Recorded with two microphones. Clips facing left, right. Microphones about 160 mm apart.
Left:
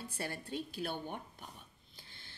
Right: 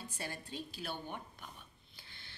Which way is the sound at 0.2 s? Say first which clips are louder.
Left 4 dB; 60° left (ahead or behind).